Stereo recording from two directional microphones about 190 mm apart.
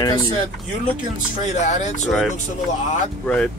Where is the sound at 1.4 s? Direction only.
35° left (ahead or behind).